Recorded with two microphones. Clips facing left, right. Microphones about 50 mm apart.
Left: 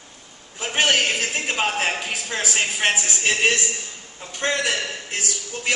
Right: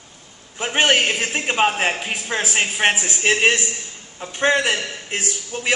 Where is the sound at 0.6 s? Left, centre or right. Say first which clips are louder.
Right 3 dB; right.